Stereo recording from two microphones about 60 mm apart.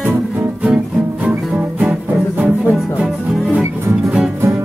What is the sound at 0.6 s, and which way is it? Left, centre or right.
Music, right.